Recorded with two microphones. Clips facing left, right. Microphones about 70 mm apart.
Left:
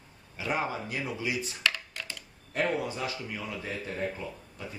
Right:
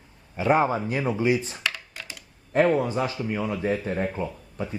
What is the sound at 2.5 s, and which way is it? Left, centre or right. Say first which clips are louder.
Speech: right 9 dB; right.